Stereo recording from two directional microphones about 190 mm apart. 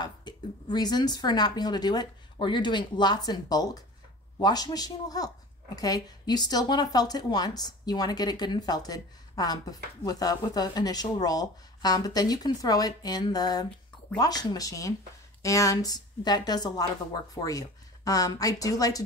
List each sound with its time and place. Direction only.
0.0 s a woman's voice: 20° left (ahead or behind)